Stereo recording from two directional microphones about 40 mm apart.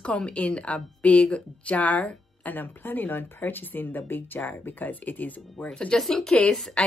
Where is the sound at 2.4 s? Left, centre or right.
Left.